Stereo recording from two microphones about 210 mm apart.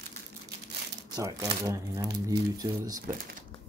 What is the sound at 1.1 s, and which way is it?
Speech, 15° right (ahead or behind).